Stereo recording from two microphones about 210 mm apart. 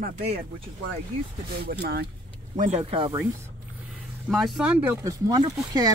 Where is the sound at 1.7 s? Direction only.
50° right (ahead or behind).